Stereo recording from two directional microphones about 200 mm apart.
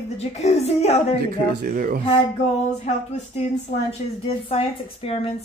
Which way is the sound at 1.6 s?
45° right (ahead or behind).